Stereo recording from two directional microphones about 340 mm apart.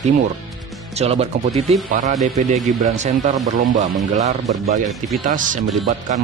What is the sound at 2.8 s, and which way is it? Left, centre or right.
Speech, right.